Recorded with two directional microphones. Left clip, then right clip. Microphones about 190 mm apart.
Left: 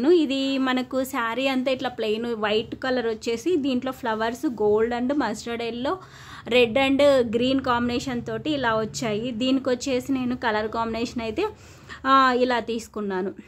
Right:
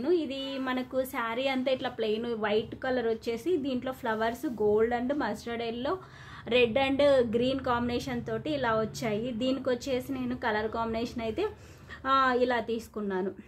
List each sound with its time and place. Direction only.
0.0 s a woman's voice: 50° left (ahead or behind); by 13.3 s 30° left (ahead or behind)